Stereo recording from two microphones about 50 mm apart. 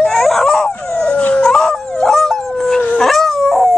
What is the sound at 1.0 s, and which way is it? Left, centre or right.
Dog, left.